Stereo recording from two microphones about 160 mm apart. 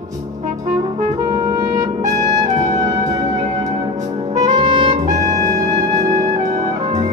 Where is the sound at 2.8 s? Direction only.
25° right (ahead or behind).